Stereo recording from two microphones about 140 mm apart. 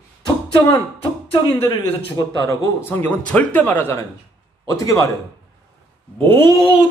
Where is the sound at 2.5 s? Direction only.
15° left (ahead or behind).